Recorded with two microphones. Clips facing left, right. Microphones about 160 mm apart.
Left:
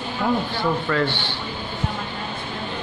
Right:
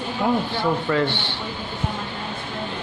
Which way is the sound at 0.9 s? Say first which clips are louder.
Right 2 dB; 20° right (ahead or behind).